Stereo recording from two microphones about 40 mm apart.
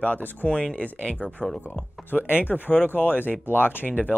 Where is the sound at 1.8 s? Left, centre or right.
Left.